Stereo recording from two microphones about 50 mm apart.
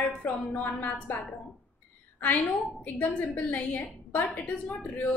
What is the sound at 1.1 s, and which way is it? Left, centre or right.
Speech, left.